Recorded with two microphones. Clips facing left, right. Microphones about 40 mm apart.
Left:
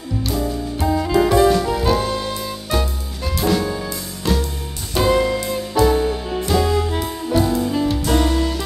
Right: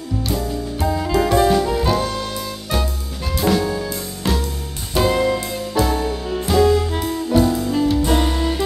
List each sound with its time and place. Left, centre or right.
0.2 s music: centre
4.2 s music: centre
4.9 s music: centre
8.2 s music: centre